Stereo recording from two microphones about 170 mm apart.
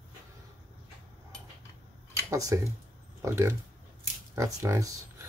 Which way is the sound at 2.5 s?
15° right (ahead or behind).